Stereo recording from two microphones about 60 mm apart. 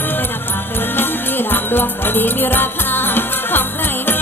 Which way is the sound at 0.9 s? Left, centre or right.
Left.